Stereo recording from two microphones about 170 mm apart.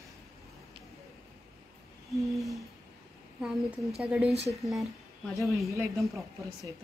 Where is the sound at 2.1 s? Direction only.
Centre (ahead or behind).